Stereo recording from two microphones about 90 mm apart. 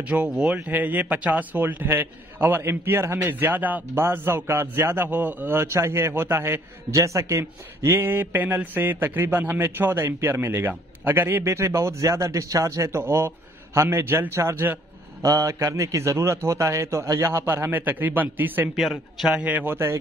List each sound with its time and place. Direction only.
0.0 s a man's voice: 15° right (ahead or behind)
18.8 s speech: centre (ahead or behind)
19.4 s speech: 20° right (ahead or behind)